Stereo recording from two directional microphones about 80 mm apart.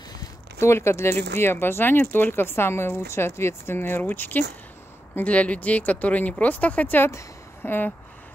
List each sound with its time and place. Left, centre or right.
0.6 s speech: left